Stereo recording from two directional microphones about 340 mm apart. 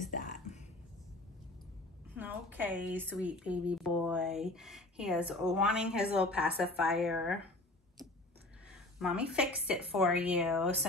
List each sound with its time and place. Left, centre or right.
0.0 s a sound: left
2.1 s speech: centre
9.0 s speech: centre